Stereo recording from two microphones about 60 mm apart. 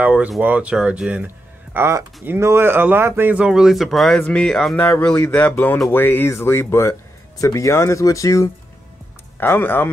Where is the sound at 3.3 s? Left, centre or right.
Centre.